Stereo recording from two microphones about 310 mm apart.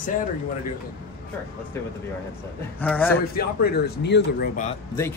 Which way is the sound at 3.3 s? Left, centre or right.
Left.